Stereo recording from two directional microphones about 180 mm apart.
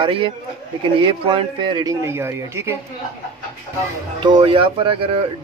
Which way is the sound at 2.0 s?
15° right (ahead or behind).